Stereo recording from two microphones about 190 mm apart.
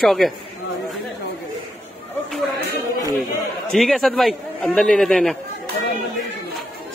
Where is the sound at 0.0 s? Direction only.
Centre (ahead or behind).